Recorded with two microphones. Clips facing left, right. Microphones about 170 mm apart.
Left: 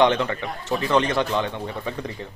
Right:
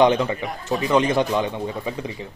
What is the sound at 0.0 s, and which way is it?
Speech, 10° right (ahead or behind).